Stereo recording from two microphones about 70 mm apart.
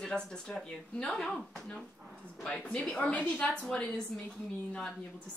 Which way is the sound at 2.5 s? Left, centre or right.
Left.